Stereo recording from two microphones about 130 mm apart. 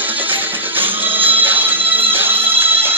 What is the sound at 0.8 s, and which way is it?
Music, 15° right (ahead or behind).